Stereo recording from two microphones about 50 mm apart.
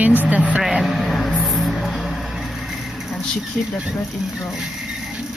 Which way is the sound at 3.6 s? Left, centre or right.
Centre.